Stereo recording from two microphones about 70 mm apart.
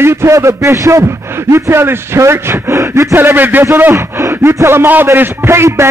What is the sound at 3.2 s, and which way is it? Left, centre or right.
Speech, right.